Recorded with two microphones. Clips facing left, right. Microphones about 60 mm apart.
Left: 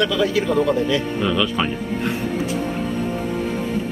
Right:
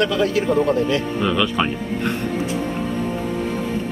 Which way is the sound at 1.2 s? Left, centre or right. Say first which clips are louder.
Right 2 dB; centre.